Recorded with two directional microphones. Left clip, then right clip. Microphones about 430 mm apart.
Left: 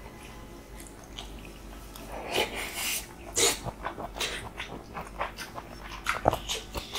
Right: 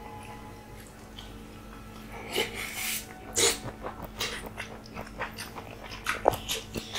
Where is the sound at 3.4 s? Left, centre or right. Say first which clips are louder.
Even; centre.